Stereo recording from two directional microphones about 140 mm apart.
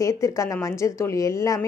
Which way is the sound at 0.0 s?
25° left (ahead or behind).